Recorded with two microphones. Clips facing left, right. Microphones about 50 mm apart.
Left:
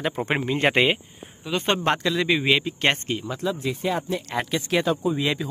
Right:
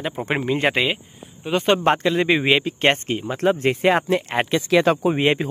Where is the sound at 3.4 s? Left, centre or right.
Right.